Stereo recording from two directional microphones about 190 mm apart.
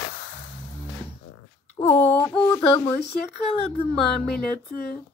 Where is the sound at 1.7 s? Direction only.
35° left (ahead or behind).